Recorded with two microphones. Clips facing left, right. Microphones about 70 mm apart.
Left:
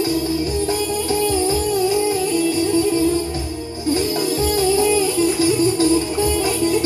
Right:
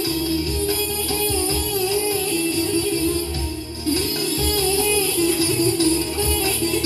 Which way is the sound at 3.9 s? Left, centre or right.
Left.